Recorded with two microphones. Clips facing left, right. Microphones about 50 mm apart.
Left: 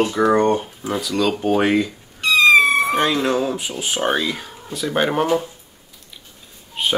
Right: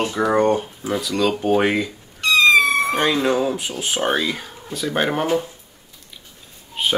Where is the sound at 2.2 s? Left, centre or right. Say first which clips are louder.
Left 1 dB; centre.